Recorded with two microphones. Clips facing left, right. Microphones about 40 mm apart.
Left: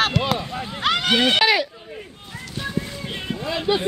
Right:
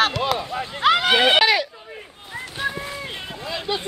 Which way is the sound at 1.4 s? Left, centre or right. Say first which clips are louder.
Even; centre.